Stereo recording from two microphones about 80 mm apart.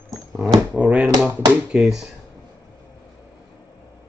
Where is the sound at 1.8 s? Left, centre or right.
Centre.